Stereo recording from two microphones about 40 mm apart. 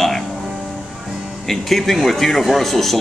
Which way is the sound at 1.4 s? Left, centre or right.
Centre.